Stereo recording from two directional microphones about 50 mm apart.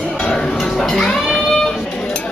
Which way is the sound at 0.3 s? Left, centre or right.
Centre.